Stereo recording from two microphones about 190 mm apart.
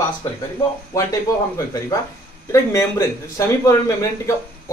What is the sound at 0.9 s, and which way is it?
Speech, 15° left (ahead or behind).